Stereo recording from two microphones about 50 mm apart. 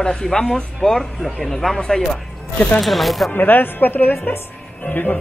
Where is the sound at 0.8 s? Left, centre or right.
Centre.